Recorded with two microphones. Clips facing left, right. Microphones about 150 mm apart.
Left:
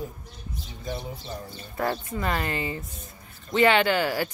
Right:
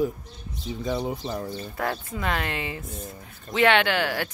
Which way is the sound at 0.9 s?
90° right.